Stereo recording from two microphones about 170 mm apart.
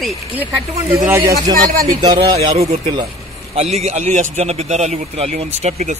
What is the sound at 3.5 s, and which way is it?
A man's voice, 40° right (ahead or behind).